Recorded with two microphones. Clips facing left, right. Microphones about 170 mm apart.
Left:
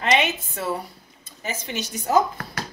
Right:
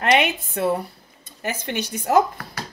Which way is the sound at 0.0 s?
60° right (ahead or behind).